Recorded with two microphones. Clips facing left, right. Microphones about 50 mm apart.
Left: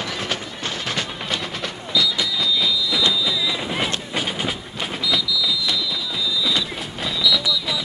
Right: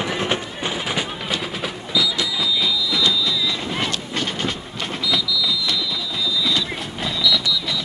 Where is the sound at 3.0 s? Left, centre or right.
Centre.